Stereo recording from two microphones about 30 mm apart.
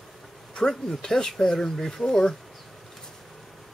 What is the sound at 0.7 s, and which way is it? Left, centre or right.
Speech, centre.